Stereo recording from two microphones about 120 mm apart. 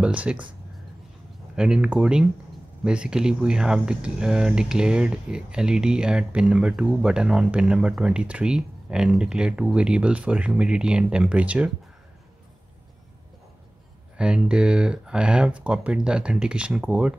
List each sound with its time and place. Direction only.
0.0 s speech: 10° right (ahead or behind)
1.6 s speech: 10° right (ahead or behind)
14.1 s speech: 10° right (ahead or behind)